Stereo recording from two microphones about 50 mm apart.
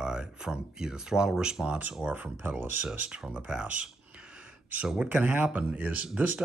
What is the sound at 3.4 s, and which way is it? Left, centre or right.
Speech, right.